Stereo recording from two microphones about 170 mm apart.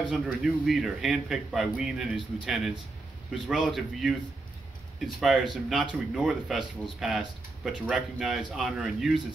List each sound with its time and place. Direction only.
0.4 s a man's voice: centre (ahead or behind)